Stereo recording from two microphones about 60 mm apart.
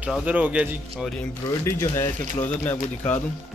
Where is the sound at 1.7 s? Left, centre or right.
Left.